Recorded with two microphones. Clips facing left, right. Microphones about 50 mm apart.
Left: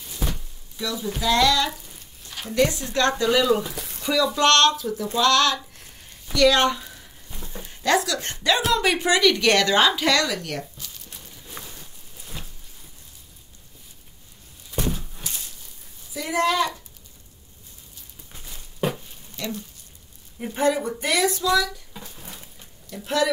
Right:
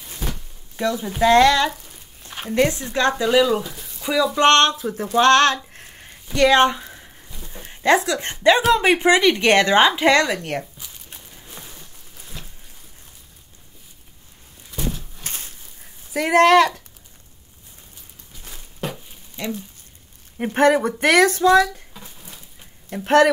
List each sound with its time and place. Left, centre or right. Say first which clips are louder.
0.7 s a woman's voice: right 7 dB; right; by 4.5 s centre
4.5 s speech: right 2 dB; right
6.3 s speech: right 3 dB; right
7.2 s livestock: left 3 dB; centre
7.6 s a woman's voice: right 4 dB; right
10.8 s a sound: even; right
12.3 s a sound: even; centre
14.9 s horse: left 1 dB; centre
15.2 s a sound: right 4 dB; right
16.1 s speech: right 9 dB; right
19.4 s a woman's voice: right 3 dB; right
20.3 s speech: right 6 dB; right
22.9 s speech: right 8 dB; right